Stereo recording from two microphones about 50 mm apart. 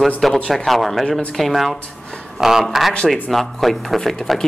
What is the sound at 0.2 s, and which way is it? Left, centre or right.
A man's voice, centre.